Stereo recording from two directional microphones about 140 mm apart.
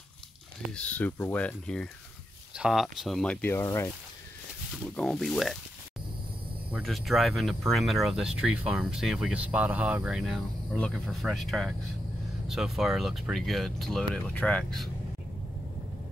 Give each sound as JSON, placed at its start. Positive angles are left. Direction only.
{"t": 0.7, "sound": "speech", "side_deg": 10}
{"t": 2.5, "sound": "speech", "side_deg": -5}
{"t": 3.6, "sound": "speech", "side_deg": 25}
{"t": 4.9, "sound": "speech", "side_deg": 5}
{"t": 6.8, "sound": "speech", "side_deg": 0}